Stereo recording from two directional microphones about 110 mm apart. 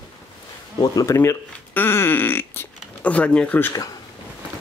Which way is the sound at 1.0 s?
20° left (ahead or behind).